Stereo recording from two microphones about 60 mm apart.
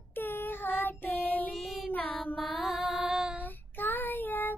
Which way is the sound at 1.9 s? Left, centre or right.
Left.